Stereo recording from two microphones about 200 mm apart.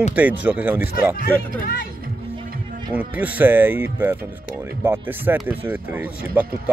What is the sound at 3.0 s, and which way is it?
Speech, 10° right (ahead or behind).